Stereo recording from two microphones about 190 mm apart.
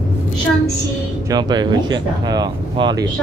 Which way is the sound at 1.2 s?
20° right (ahead or behind).